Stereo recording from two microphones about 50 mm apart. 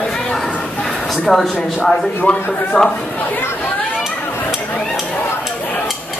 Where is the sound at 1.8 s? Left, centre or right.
Centre.